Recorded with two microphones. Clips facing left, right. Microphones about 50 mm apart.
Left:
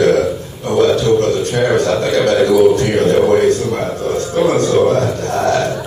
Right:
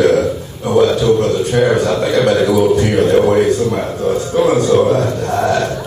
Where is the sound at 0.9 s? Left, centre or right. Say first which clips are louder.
Even; centre.